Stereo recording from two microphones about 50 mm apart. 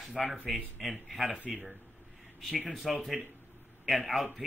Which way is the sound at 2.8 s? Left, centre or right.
Centre.